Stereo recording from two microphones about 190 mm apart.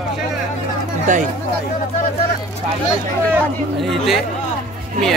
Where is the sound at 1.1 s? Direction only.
40° right (ahead or behind).